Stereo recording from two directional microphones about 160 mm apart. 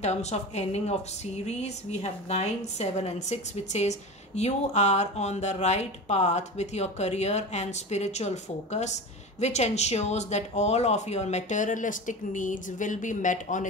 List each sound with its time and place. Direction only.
0.0 s speech: 45° left (ahead or behind)